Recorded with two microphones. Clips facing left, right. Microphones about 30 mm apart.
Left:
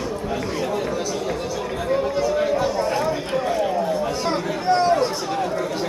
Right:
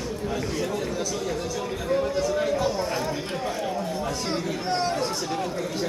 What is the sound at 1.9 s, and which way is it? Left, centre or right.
Chatter, centre.